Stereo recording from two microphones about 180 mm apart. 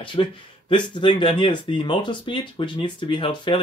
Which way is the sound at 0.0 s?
30° left (ahead or behind).